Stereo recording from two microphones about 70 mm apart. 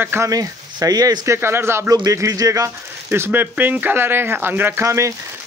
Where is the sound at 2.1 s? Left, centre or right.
Right.